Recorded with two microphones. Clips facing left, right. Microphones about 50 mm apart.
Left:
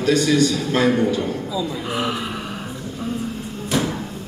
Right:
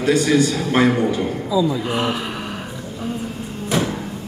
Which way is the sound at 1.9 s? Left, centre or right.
Centre.